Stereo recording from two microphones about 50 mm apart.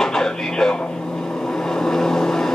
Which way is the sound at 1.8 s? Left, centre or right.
Centre.